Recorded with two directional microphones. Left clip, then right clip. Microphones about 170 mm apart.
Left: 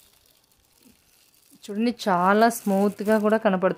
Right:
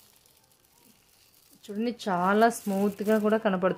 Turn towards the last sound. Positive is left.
turn(degrees=20)  # may be behind; listen again after turning